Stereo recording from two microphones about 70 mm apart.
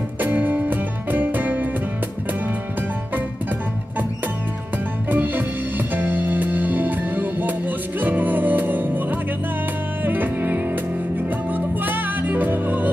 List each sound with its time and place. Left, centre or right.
0.2 s music: right
5.1 s music: right
10.0 s music: right